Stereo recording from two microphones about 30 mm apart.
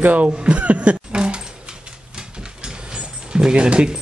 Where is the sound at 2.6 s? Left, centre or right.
Right.